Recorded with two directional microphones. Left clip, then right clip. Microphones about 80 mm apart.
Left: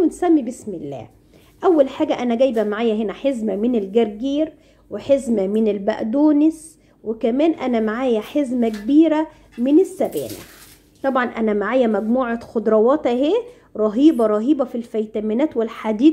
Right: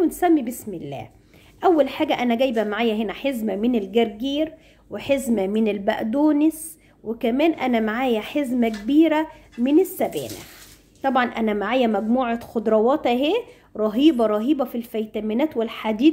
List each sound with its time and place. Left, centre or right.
0.0 s a woman's voice: left
13.7 s a woman's voice: left